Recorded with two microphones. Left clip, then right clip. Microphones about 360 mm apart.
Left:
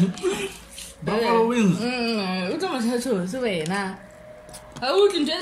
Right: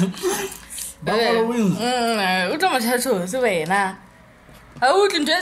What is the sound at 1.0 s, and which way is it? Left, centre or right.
Speech, centre.